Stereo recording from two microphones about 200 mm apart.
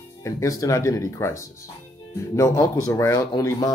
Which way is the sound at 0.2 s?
15° left (ahead or behind).